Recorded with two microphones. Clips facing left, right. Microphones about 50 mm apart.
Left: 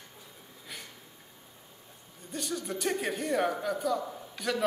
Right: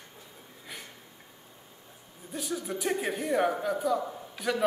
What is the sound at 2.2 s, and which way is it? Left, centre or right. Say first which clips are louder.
Speech: right 1 dB; centre.